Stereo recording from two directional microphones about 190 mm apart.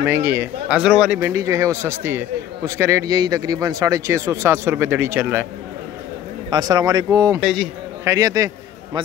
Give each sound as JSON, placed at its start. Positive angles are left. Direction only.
{"t": 0.0, "sound": "speech", "side_deg": -10}
{"t": 6.5, "sound": "speech", "side_deg": -20}
{"t": 7.3, "sound": "a man's voice", "side_deg": 0}
{"t": 8.0, "sound": "speech", "side_deg": -15}